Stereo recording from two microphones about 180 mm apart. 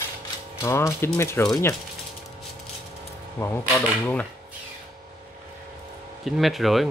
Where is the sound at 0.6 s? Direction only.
15° left (ahead or behind).